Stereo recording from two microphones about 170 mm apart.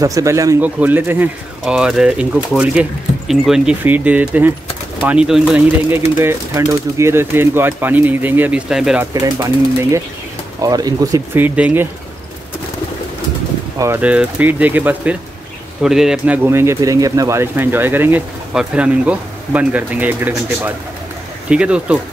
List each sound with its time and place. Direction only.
0.0 s speech: 20° right (ahead or behind); by 9.0 s 5° right (ahead or behind)
9.1 s speech: 20° right (ahead or behind)
13.7 s speech: 15° right (ahead or behind)
16.4 s speech: 15° right (ahead or behind)